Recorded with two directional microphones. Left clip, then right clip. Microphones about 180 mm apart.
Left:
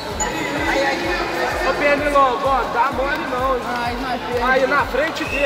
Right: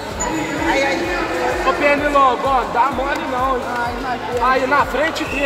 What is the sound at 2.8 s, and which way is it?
Speech, 55° right (ahead or behind).